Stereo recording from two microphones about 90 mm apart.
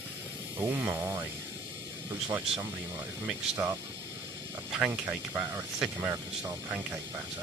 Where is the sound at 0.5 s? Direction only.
20° right (ahead or behind).